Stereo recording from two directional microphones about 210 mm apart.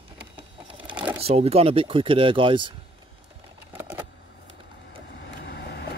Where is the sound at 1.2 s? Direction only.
30° right (ahead or behind).